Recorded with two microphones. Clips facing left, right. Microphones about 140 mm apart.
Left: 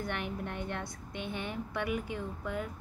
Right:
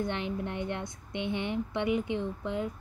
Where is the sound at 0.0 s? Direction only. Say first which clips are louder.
Right 4 dB; 20° right (ahead or behind).